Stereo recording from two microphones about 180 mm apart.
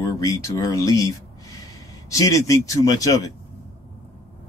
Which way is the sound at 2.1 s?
20° left (ahead or behind).